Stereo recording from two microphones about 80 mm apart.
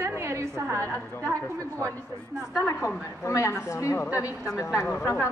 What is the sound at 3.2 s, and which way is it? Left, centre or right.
A woman's voice, left.